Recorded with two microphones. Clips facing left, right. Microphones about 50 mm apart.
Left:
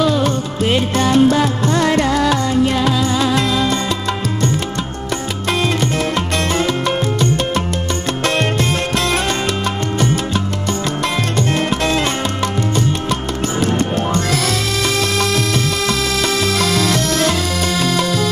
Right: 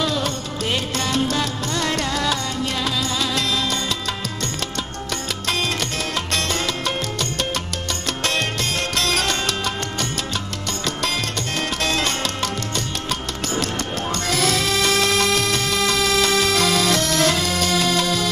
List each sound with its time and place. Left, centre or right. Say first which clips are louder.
0.0 s music: left 7 dB; centre
6.5 s music: left 7 dB; left
11.0 s music: left 6 dB; left
13.6 s music: left 9 dB; left